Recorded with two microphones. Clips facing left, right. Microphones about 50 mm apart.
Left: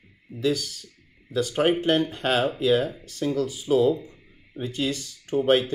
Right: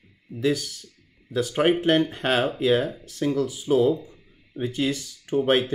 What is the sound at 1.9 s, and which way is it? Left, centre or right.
Speech, right.